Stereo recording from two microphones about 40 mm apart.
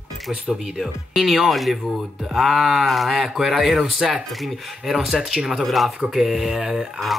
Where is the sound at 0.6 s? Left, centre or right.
Centre.